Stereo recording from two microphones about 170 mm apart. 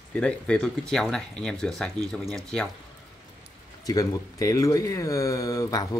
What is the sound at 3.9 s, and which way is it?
Speech, 20° left (ahead or behind).